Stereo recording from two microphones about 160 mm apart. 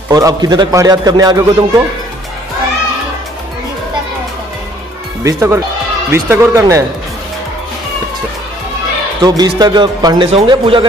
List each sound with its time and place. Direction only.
0.1 s a man's voice: 25° right (ahead or behind)
5.2 s a man's voice: 20° right (ahead or behind)
9.2 s a man's voice: 25° right (ahead or behind)